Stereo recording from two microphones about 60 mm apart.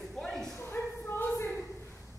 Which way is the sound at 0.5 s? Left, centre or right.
Left.